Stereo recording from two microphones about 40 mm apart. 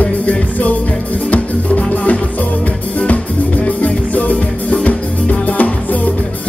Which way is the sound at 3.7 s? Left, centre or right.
Left.